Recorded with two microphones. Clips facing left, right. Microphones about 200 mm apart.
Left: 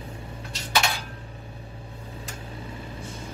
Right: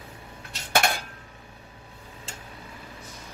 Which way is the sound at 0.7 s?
50° right (ahead or behind).